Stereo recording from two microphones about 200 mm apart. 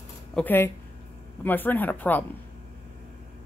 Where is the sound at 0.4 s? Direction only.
10° left (ahead or behind).